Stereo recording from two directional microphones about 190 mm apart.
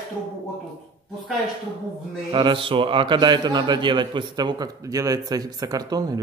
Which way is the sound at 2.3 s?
25° right (ahead or behind).